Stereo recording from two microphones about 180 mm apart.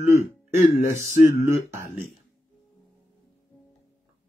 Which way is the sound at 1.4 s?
15° right (ahead or behind).